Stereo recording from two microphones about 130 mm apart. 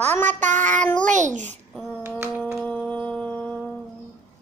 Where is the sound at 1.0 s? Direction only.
70° right (ahead or behind).